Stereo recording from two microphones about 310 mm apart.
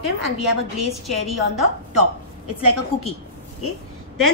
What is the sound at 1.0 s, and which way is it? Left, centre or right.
A woman's voice, centre.